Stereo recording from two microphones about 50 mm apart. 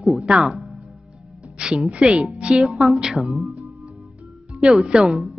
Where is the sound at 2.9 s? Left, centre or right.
Centre.